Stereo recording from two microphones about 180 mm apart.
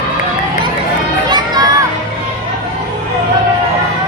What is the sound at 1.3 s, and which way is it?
Music, 25° right (ahead or behind).